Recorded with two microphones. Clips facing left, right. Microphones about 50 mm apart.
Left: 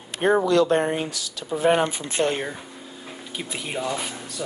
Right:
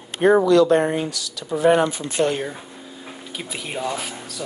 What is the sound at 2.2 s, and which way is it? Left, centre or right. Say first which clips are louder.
Speech: right 3 dB; right.